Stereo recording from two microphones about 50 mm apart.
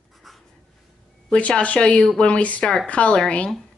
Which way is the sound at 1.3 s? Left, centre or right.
Left.